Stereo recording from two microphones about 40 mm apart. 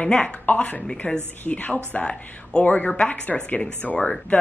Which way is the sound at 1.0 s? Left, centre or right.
Left.